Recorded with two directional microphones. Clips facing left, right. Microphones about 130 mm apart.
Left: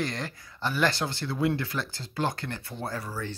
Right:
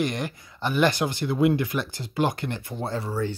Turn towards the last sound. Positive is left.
turn(degrees=-25)  # may be behind; listen again after turning